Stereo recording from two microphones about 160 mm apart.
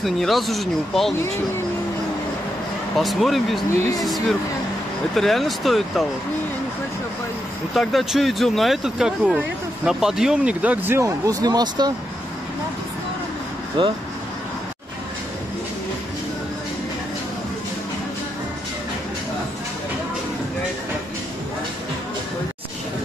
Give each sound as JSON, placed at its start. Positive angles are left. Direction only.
{"t": 0.0, "sound": "speech", "side_deg": 0}
{"t": 3.0, "sound": "speech", "side_deg": 0}
{"t": 7.7, "sound": "speech", "side_deg": 0}
{"t": 13.8, "sound": "speech", "side_deg": -30}